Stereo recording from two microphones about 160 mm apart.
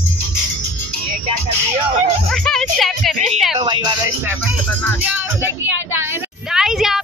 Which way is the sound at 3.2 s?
Centre (ahead or behind).